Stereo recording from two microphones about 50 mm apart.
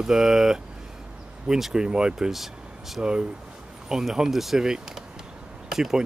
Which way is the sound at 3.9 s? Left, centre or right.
Centre.